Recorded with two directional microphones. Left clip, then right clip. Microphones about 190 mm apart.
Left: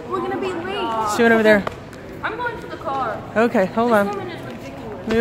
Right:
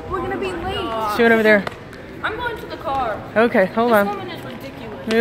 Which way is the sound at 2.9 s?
60° right (ahead or behind).